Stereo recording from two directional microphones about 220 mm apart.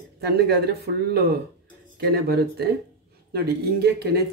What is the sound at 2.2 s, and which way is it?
Speech, 45° right (ahead or behind).